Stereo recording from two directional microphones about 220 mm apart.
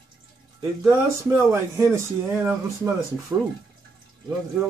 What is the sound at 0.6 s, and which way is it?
Speech, 10° right (ahead or behind).